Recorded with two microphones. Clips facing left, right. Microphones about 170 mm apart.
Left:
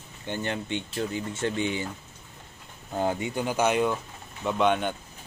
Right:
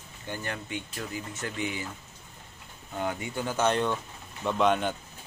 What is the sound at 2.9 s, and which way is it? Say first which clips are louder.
Speech: left 5 dB; 35° left (ahead or behind).